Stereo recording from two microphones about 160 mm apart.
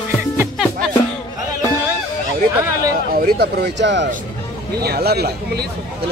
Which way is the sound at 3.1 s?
65° right (ahead or behind).